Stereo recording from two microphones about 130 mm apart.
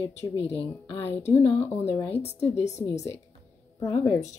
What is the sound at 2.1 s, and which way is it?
Speech, 55° left (ahead or behind).